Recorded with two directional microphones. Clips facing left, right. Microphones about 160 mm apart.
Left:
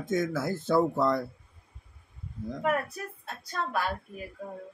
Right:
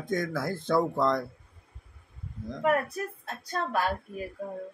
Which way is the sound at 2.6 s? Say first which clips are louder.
Right 3 dB; 40° right (ahead or behind).